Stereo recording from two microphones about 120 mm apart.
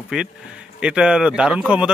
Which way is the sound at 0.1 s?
5° right (ahead or behind).